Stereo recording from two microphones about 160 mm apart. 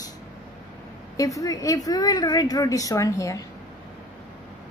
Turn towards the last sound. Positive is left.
turn(degrees=20)  # may be behind; listen again after turning